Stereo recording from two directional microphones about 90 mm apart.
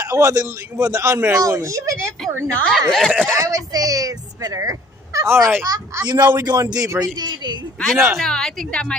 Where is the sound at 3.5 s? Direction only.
40° right (ahead or behind); by 7.6 s 55° right (ahead or behind).